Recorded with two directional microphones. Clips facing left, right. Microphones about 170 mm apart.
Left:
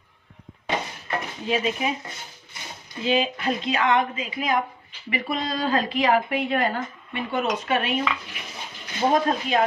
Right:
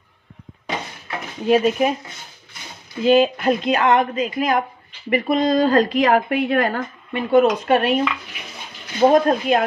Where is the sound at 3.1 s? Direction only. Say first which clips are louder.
Right 8 dB; 50° right (ahead or behind).